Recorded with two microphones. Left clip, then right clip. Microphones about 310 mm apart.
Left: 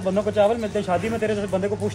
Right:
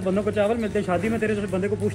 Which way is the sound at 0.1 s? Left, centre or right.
Left.